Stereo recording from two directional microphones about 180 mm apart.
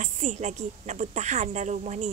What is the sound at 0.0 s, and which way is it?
A woman's voice, 40° right (ahead or behind).